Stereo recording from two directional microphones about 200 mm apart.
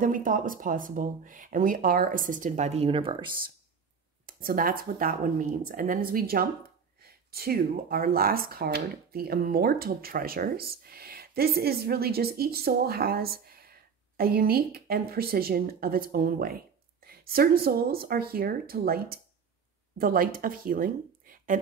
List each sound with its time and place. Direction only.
0.0 s speech: 45° right (ahead or behind); by 3.5 s 25° right (ahead or behind)
4.3 s speech: 45° right (ahead or behind)